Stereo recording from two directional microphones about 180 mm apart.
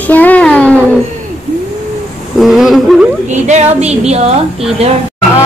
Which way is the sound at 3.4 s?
40° right (ahead or behind).